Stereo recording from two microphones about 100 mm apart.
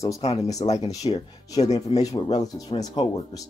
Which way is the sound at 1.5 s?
40° left (ahead or behind).